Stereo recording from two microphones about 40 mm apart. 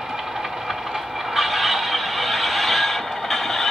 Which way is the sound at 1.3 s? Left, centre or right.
Centre.